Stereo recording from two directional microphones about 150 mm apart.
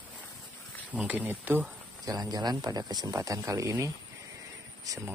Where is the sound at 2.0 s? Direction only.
25° right (ahead or behind).